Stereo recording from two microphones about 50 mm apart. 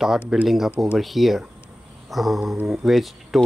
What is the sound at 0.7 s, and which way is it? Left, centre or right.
Speech, right.